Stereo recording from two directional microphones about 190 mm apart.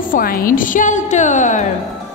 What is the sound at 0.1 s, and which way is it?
A woman's voice, 50° left (ahead or behind).